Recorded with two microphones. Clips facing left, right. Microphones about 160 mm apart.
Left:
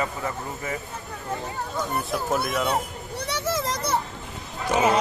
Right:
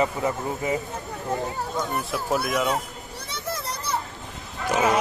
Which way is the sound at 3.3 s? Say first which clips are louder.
Left 5 dB; 90° left.